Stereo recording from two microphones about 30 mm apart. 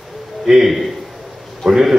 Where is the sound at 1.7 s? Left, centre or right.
Centre.